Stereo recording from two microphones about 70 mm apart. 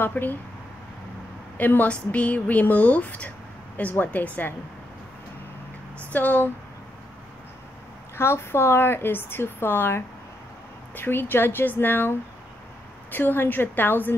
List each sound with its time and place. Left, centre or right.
0.0 s a woman's voice: left
1.6 s a woman's voice: left
6.1 s a woman's voice: left
8.2 s a woman's voice: left